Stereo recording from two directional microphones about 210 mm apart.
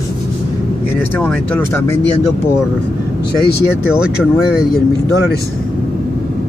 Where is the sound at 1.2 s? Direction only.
10° left (ahead or behind).